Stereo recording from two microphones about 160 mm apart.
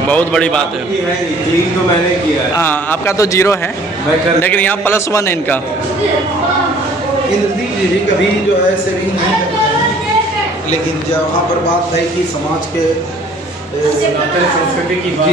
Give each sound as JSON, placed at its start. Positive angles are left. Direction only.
{"t": 0.1, "sound": "a man's voice", "side_deg": 5}
{"t": 2.5, "sound": "a man's voice", "side_deg": 15}